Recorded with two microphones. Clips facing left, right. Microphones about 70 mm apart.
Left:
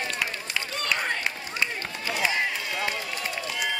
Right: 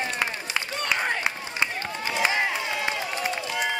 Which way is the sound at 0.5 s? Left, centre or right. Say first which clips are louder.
Right 2 dB; right.